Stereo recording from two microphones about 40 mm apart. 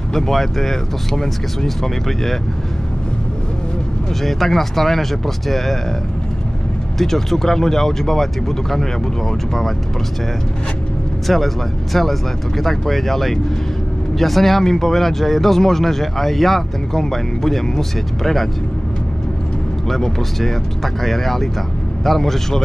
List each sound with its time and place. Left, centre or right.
0.1 s speech: centre
4.2 s speech: centre
7.0 s speech: centre
11.2 s speech: centre
19.9 s speech: centre